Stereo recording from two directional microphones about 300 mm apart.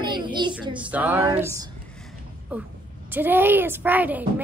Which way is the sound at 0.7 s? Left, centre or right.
Centre.